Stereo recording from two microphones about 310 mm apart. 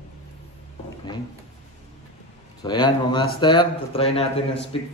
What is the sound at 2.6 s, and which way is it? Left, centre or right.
A man's voice, centre.